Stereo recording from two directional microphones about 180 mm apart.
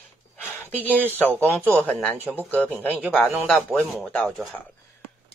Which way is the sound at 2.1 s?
10° right (ahead or behind).